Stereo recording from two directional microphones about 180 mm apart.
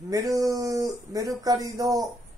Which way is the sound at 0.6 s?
20° right (ahead or behind).